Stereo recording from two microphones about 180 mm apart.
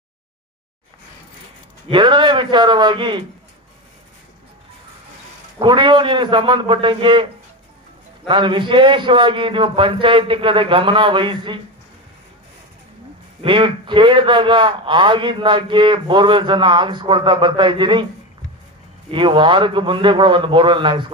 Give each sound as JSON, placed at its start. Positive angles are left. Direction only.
{"t": 1.9, "sound": "a man's voice", "side_deg": -25}
{"t": 5.6, "sound": "a man's voice", "side_deg": -25}
{"t": 8.3, "sound": "a man's voice", "side_deg": -25}
{"t": 13.4, "sound": "a man's voice", "side_deg": -30}
{"t": 19.0, "sound": "a man's voice", "side_deg": -30}